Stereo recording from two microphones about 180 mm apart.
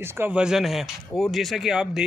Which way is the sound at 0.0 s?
10° right (ahead or behind).